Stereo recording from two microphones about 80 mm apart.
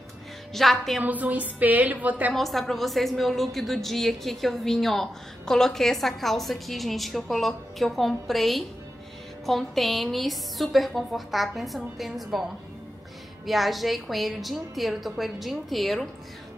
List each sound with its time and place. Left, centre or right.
0.5 s a woman's voice: centre
1.0 s a woman's voice: centre
2.3 s a woman's voice: centre
13.5 s a woman's voice: centre